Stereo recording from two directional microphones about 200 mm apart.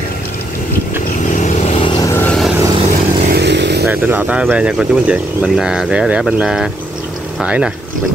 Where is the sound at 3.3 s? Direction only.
55° right (ahead or behind).